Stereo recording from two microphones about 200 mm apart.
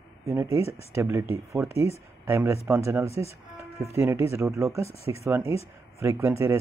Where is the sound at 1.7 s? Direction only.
30° left (ahead or behind).